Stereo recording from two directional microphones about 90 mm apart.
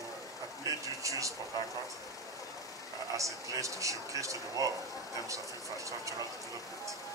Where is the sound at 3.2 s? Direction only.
35° right (ahead or behind).